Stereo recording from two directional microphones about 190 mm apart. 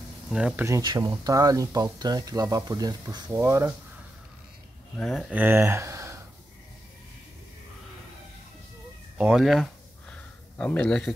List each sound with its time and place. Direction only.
0.3 s speech: 5° right (ahead or behind)
0.7 s speech: 15° right (ahead or behind)
4.9 s speech: 5° left (ahead or behind)
5.3 s speech: 10° right (ahead or behind)
9.2 s a sound: 5° right (ahead or behind)